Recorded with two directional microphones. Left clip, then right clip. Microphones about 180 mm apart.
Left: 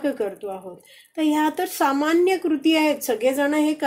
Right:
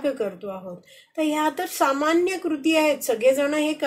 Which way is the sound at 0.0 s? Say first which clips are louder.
Left 1 dB; 40° left (ahead or behind).